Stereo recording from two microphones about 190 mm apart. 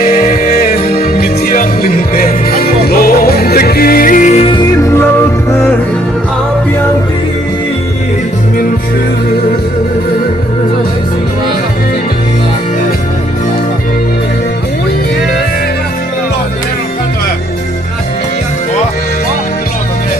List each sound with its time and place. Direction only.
0.0 s music: 45° left (ahead or behind); by 5.0 s 15° left (ahead or behind)